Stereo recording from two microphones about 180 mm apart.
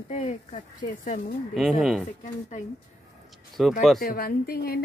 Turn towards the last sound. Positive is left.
turn(degrees=55)  # may be behind; listen again after turning